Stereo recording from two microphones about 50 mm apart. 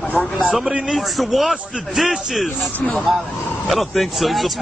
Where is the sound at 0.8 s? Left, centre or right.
Centre.